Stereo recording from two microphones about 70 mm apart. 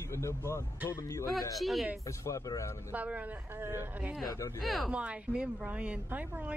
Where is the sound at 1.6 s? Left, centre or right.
Centre.